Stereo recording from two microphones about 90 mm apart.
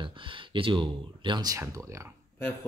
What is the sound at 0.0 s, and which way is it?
Speech, 70° right (ahead or behind).